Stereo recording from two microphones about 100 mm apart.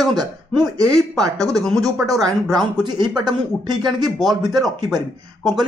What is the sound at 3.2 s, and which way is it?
Speech, 45° right (ahead or behind).